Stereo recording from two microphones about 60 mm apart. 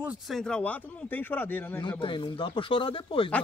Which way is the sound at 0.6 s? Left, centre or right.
Left.